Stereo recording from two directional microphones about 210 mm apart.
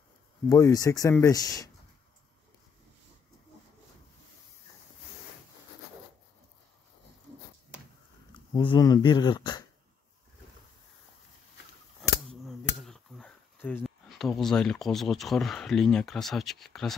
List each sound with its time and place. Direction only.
0.5 s speech: 15° left (ahead or behind)
8.3 s speech: 20° left (ahead or behind)
12.0 s cap gun: centre (ahead or behind)